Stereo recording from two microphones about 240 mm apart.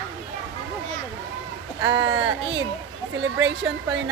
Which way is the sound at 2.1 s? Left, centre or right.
Right.